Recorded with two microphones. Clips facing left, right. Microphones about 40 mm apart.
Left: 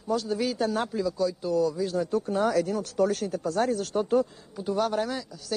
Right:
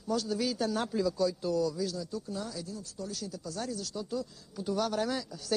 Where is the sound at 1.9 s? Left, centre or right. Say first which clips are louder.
Left 11 dB; left.